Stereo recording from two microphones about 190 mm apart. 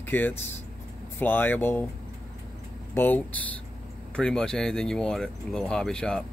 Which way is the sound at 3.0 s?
10° left (ahead or behind).